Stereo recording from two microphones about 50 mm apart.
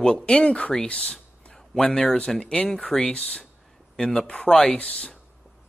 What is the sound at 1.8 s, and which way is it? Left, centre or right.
A man's voice, centre.